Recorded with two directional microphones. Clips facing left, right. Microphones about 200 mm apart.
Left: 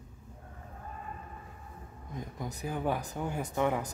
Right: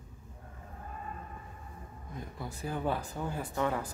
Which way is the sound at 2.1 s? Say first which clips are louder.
Left 3 dB; 15° left (ahead or behind).